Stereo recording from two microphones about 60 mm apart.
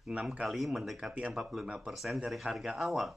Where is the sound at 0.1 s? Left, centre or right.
Centre.